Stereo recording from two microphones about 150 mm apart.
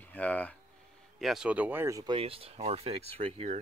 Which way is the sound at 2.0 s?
35° right (ahead or behind).